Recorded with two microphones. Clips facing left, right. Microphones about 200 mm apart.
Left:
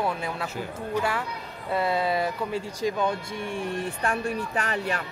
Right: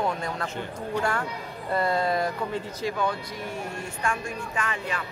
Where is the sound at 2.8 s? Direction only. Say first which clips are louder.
Left 2 dB; 20° left (ahead or behind).